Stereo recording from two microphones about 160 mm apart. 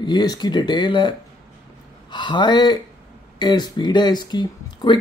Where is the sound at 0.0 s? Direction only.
25° left (ahead or behind).